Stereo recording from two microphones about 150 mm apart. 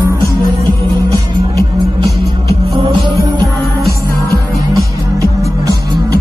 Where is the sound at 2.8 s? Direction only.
40° right (ahead or behind).